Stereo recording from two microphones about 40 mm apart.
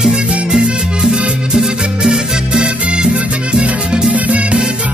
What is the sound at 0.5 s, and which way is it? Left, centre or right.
Music, centre.